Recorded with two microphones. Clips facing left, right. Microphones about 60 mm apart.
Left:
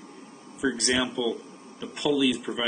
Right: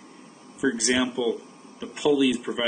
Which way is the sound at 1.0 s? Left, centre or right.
Right.